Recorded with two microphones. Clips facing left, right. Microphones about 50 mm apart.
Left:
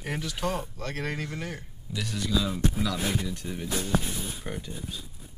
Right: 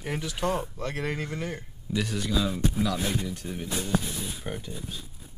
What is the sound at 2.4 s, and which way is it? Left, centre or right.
Speech, right.